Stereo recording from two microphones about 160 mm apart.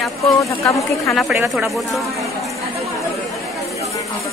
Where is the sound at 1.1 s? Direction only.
Centre (ahead or behind).